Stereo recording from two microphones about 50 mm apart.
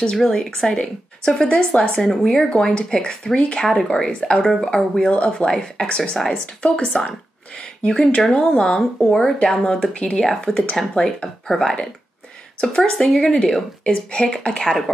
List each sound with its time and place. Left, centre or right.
0.4 s a woman's voice: centre